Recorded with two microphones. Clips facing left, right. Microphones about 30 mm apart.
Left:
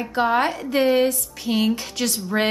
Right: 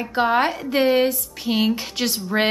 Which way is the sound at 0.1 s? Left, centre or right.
Centre.